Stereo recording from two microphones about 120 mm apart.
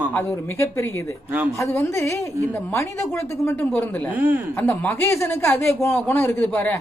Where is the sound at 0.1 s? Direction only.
20° left (ahead or behind).